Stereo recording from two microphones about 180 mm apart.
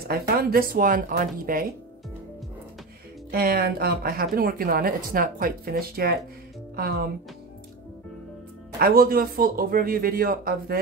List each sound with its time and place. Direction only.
0.1 s a man's voice: 55° right (ahead or behind)
3.3 s speech: 55° right (ahead or behind)
8.7 s a man's voice: 55° right (ahead or behind)